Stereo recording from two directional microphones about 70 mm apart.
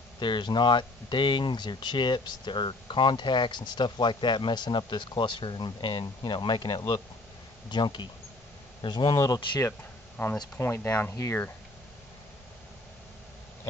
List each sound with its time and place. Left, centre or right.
0.4 s speech: left
8.9 s speech: left
10.2 s speech: left